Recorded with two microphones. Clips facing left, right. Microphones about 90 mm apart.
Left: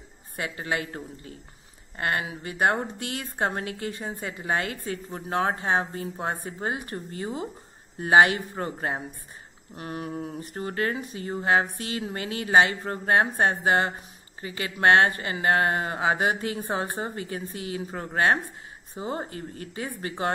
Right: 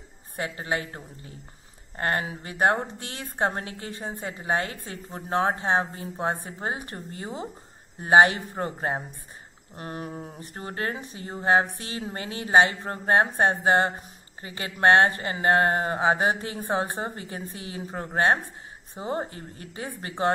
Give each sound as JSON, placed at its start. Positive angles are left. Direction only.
{"t": 0.4, "sound": "a woman's voice", "side_deg": -35}